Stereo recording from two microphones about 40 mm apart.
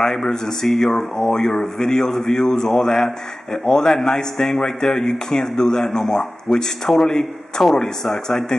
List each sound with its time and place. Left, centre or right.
0.0 s a man's voice: centre